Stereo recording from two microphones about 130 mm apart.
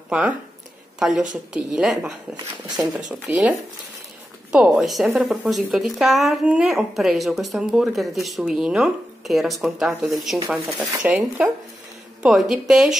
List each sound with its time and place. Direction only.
0.9 s speech: 5° right (ahead or behind)
2.3 s speech: 30° right (ahead or behind)
3.1 s speech: 10° right (ahead or behind)
11.1 s speech: 10° right (ahead or behind)